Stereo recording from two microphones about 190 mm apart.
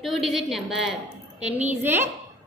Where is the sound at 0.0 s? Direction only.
Centre (ahead or behind).